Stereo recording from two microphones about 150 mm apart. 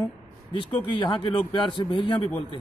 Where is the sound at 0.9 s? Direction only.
30° left (ahead or behind).